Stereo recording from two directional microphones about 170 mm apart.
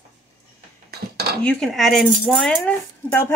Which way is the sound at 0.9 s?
70° right (ahead or behind).